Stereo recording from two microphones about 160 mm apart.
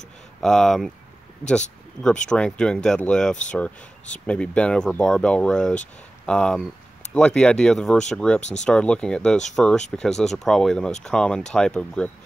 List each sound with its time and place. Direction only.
0.4 s speech: centre (ahead or behind)
2.2 s speech: 5° left (ahead or behind)
8.4 s speech: 45° left (ahead or behind)
8.6 s speech: 5° left (ahead or behind)